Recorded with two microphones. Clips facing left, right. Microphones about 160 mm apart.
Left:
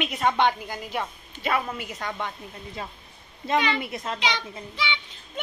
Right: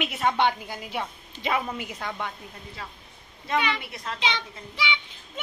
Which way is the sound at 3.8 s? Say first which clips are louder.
Left 5 dB; 25° left (ahead or behind).